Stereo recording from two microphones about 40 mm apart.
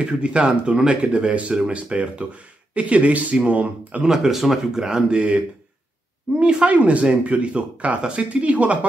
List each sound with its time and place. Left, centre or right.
0.0 s speech: right
4.0 s speech: centre
6.3 s speech: right